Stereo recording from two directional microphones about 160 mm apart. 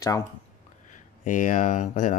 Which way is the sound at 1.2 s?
55° left (ahead or behind).